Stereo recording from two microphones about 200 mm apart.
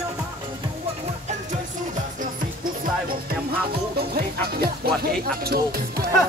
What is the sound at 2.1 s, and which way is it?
Music, 45° right (ahead or behind).